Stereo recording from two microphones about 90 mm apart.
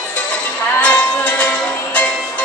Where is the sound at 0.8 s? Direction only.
15° left (ahead or behind).